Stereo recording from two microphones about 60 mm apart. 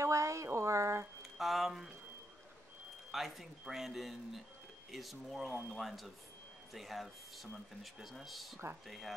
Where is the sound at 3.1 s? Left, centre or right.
Centre.